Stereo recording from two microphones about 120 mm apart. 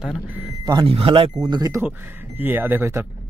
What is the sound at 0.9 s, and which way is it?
Speech, 50° right (ahead or behind).